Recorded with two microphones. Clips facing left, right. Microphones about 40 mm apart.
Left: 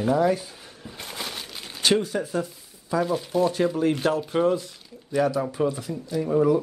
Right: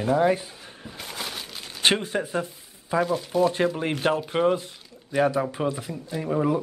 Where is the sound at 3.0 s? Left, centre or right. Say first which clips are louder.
Even; centre.